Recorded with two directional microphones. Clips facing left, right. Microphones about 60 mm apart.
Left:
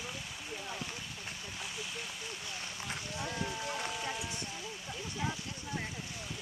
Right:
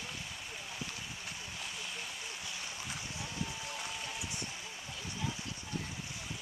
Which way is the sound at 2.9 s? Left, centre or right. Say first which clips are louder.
Left 4 dB; left.